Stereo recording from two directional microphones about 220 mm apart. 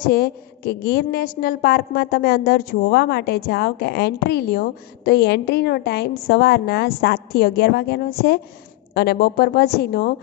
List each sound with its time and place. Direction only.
0.1 s a woman's voice: 45° left (ahead or behind)